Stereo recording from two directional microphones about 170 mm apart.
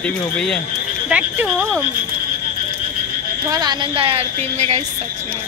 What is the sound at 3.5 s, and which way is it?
A woman's voice, 25° right (ahead or behind).